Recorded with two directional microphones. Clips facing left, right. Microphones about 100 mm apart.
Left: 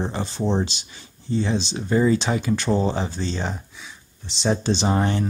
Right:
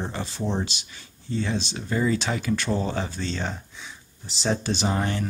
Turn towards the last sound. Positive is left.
turn(degrees=30)  # may be behind; listen again after turning